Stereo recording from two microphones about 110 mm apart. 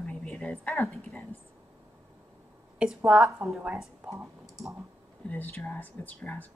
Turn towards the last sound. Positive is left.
turn(degrees=15)  # may be behind; listen again after turning